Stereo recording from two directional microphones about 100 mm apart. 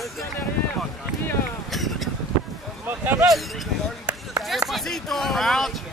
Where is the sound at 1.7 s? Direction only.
Centre (ahead or behind).